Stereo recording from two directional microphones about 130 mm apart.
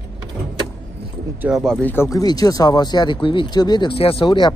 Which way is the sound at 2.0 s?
30° left (ahead or behind).